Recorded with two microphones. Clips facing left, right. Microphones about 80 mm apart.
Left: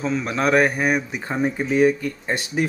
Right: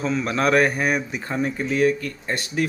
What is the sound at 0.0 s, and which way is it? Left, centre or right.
Speech, centre.